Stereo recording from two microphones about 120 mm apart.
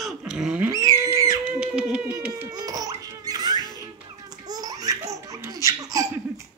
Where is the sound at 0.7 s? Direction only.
25° right (ahead or behind).